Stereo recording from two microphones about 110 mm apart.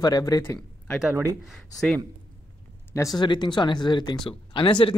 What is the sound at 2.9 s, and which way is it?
Speech, 30° left (ahead or behind).